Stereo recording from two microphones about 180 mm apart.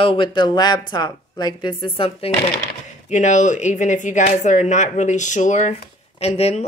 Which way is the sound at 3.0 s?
40° left (ahead or behind).